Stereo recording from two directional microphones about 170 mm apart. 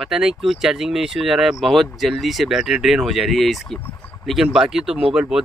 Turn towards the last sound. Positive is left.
turn(degrees=-5)  # may be behind; listen again after turning